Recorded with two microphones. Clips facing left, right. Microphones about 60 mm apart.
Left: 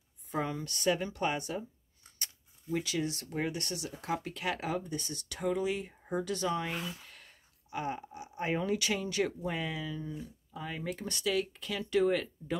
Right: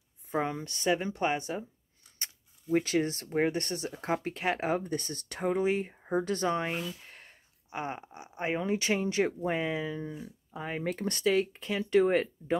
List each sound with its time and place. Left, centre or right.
0.3 s speech: right
7.1 s a sound: right
8.6 s speech: right
10.8 s speech: right